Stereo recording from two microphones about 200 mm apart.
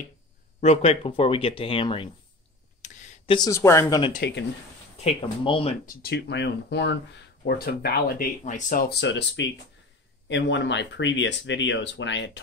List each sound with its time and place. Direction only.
0.6 s speech: 30° left (ahead or behind)
2.8 s a sound: 35° left (ahead or behind)
3.3 s speech: 15° left (ahead or behind)
4.2 s speech: 55° left (ahead or behind)
5.0 s speech: 25° left (ahead or behind)
6.0 s speech: 60° left (ahead or behind); by 8.9 s 40° left (ahead or behind)
9.0 s speech: 65° left (ahead or behind)